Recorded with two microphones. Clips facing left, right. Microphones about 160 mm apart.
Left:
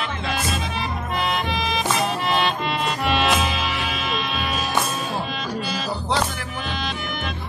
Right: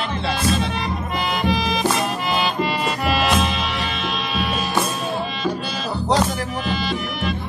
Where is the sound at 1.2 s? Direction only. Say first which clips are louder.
Right 4 dB; centre (ahead or behind).